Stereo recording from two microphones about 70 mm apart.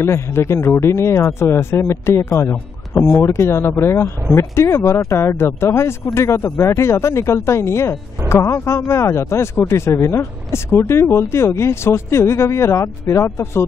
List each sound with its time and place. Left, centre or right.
0.0 s speech: left